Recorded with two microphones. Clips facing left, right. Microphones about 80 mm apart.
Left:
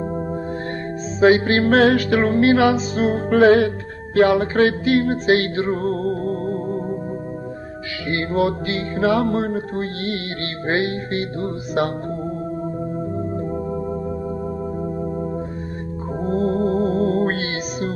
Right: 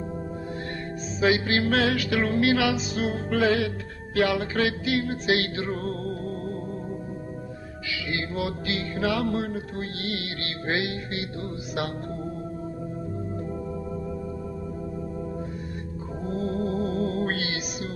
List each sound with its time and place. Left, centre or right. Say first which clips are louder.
1.2 s music: left 8 dB; left
8.1 s music: left 10 dB; left
16.3 s music: left 8 dB; left